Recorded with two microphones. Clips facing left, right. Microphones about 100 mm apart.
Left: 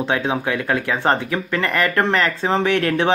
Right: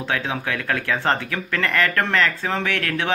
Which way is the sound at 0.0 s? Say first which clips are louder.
Left 5 dB; 20° left (ahead or behind).